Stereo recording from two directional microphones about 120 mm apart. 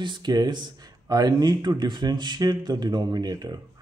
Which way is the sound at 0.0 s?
40° right (ahead or behind).